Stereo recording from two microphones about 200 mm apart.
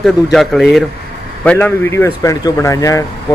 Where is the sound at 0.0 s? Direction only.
Centre (ahead or behind).